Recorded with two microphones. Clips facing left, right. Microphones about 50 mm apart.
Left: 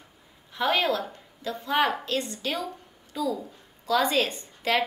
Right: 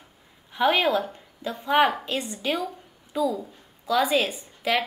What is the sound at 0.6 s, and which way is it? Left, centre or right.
A woman's voice, centre.